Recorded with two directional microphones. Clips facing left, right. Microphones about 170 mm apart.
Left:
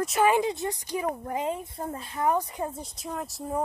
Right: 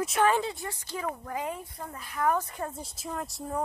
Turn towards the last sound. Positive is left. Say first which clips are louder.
# left 1 dB
turn(degrees=0)  # may be behind; listen again after turning